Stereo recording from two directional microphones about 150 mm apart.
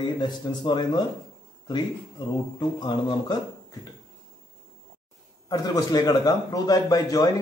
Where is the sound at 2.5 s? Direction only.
30° left (ahead or behind).